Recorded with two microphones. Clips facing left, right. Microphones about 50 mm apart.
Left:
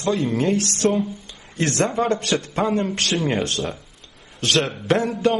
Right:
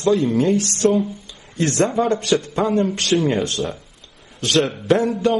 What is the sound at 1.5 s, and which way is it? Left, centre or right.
Speech, left.